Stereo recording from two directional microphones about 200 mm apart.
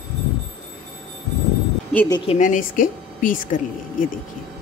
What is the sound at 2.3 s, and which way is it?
Speech, 40° left (ahead or behind).